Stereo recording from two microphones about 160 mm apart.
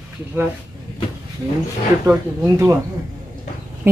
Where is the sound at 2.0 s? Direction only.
15° right (ahead or behind).